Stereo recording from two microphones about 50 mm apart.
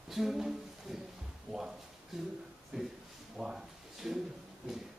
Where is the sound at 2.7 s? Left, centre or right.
Centre.